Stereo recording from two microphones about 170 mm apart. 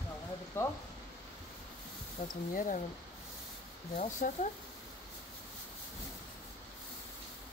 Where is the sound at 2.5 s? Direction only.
50° left (ahead or behind).